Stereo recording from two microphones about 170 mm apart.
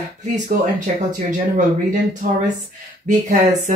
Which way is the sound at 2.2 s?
55° right (ahead or behind).